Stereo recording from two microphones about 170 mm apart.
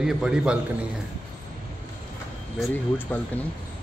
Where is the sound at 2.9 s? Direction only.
10° left (ahead or behind).